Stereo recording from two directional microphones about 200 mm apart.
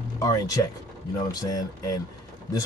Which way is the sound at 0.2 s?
15° left (ahead or behind).